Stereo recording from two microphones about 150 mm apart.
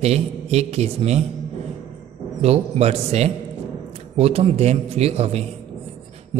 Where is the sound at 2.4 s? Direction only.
45° right (ahead or behind).